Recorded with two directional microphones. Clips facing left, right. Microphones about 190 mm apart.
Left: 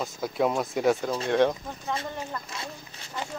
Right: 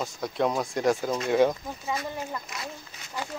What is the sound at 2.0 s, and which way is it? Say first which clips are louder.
Speech: right 1 dB; 25° left (ahead or behind).